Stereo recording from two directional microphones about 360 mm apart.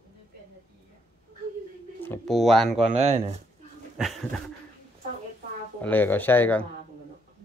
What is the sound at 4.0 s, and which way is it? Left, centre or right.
Speech, centre.